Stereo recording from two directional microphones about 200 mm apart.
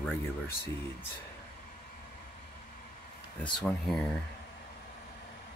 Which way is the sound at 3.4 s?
5° left (ahead or behind).